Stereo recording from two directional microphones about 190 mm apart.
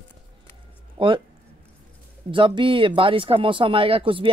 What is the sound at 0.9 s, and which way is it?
Speech, 25° right (ahead or behind).